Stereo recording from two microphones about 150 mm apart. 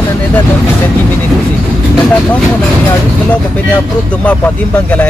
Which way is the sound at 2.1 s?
10° left (ahead or behind).